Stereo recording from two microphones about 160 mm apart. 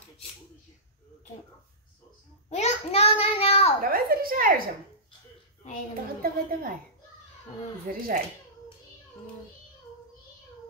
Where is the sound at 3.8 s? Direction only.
65° right (ahead or behind).